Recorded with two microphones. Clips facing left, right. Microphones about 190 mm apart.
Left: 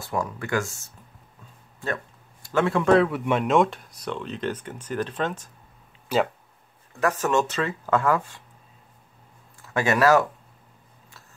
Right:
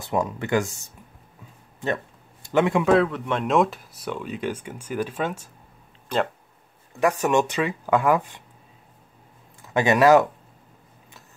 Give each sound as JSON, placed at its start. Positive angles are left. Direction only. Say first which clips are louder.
{"t": 0.0, "sound": "speech", "louder": "right 3 dB", "side_deg": -20}
{"t": 2.4, "sound": "a man's voice", "louder": "right 2 dB", "side_deg": -15}
{"t": 2.8, "sound": "speech", "louder": "even", "side_deg": 0}
{"t": 6.1, "sound": "speech", "louder": "left 1 dB", "side_deg": 5}
{"t": 7.0, "sound": "speech", "louder": "right 2 dB", "side_deg": -15}
{"t": 9.6, "sound": "speech", "louder": "right 3 dB", "side_deg": -20}